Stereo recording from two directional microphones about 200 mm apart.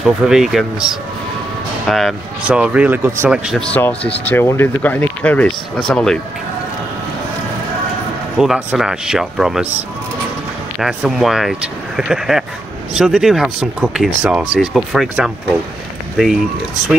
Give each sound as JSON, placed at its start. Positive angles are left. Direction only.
{"t": 0.0, "sound": "speech", "side_deg": -5}
{"t": 8.4, "sound": "speech", "side_deg": 0}
{"t": 10.8, "sound": "speech", "side_deg": 0}